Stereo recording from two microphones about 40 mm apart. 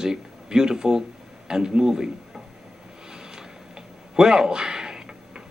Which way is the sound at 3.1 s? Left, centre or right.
Centre.